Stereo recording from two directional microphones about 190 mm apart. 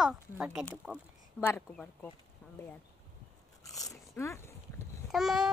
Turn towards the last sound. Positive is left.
turn(degrees=0)  # may be behind; listen again after turning